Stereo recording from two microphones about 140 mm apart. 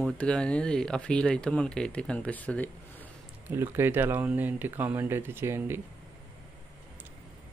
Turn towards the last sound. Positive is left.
turn(degrees=-15)  # may be behind; listen again after turning